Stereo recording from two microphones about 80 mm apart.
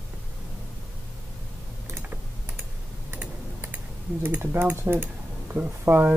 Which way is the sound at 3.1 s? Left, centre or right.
Right.